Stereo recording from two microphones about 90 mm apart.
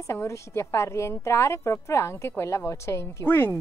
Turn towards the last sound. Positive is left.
turn(degrees=25)  # may be behind; listen again after turning